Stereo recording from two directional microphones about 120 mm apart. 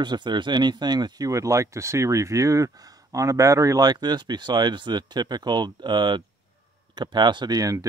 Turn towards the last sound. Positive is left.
turn(degrees=-30)  # may be behind; listen again after turning